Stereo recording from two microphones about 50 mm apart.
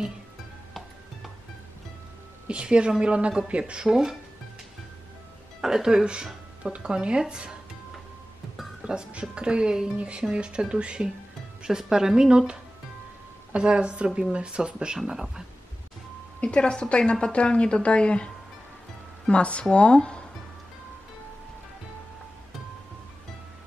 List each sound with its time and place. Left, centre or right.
2.4 s a woman's voice: centre
3.9 s speech: centre
5.6 s speech: centre
8.8 s speech: centre
15.0 s speech: centre
16.3 s a woman's voice: left